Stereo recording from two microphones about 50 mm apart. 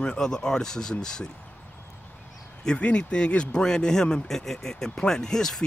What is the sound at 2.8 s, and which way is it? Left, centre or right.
Speech, left.